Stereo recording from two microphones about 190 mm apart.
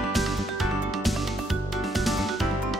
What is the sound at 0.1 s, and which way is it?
Music, centre (ahead or behind).